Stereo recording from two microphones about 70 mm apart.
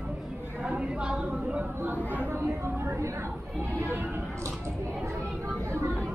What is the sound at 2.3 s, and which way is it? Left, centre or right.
Speech, right.